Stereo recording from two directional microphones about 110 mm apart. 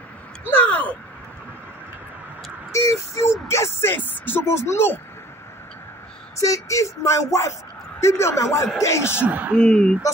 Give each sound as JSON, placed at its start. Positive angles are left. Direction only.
{"t": 0.5, "sound": "a sound", "side_deg": 15}
{"t": 2.7, "sound": "speech", "side_deg": 25}
{"t": 6.4, "sound": "speech", "side_deg": 30}
{"t": 9.2, "sound": "speech", "side_deg": -15}
{"t": 9.6, "sound": "speech", "side_deg": 10}